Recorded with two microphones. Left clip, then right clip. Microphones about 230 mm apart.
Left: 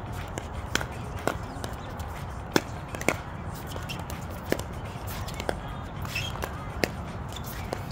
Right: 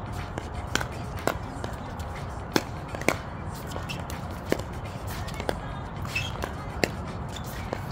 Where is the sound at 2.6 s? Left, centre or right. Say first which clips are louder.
Left 1 dB; centre.